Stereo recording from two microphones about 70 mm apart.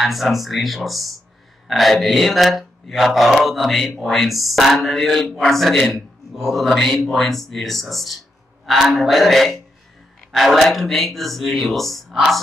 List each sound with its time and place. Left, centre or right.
0.0 s speech: centre